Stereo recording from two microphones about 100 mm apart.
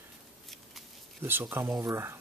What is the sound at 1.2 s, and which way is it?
Speech, 20° right (ahead or behind).